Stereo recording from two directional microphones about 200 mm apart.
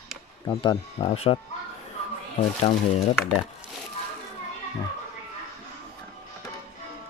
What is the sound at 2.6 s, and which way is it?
Speech, 35° left (ahead or behind).